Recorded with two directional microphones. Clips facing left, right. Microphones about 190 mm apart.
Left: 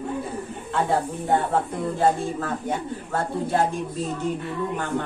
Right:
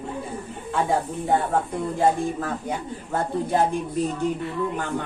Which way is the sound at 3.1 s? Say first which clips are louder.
Right 1 dB; 15° right (ahead or behind).